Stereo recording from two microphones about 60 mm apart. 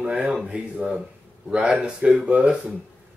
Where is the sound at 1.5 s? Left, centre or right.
Centre.